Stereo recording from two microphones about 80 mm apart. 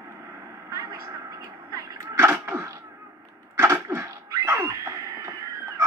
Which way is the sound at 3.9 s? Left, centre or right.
Right.